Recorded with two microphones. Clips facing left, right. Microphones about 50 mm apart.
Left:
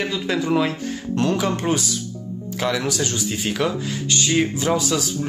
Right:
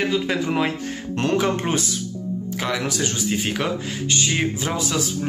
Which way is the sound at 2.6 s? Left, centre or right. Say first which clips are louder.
Left 3 dB; centre.